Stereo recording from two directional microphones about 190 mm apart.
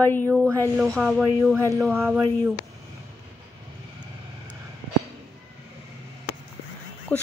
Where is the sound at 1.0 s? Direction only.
Centre (ahead or behind).